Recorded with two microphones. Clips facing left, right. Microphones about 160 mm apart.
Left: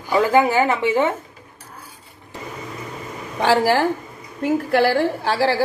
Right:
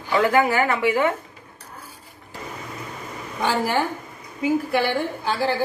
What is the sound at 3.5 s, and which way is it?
A woman's voice, 85° left.